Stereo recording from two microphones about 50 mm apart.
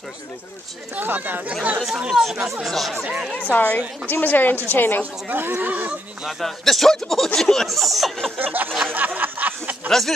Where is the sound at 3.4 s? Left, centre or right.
Left.